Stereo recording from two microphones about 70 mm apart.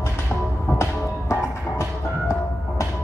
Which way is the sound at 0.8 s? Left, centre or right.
Left.